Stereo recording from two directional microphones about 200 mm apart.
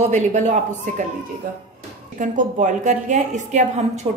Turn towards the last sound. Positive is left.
turn(degrees=-35)  # may be behind; listen again after turning